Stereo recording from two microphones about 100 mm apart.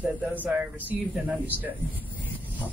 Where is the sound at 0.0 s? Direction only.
15° right (ahead or behind).